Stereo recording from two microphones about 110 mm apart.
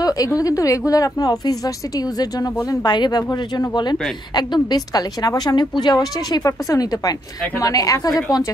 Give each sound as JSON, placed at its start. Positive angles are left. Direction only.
{"t": 0.0, "sound": "a woman's voice", "side_deg": 35}